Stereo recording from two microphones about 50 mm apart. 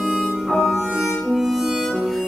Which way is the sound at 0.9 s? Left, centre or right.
Centre.